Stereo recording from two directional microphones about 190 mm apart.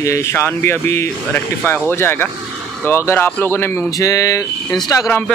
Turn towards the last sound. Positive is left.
turn(degrees=15)  # may be behind; listen again after turning